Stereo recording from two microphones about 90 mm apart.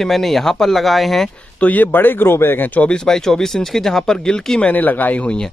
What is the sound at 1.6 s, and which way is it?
Speech, 20° left (ahead or behind).